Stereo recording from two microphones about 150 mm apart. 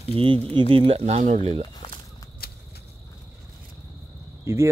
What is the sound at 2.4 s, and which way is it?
Cricket, 90° left.